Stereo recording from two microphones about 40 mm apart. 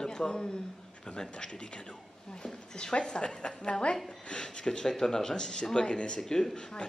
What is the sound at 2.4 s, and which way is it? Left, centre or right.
Speech, centre.